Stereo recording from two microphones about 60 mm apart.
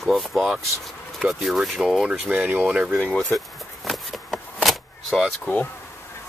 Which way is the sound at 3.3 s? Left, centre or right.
Centre.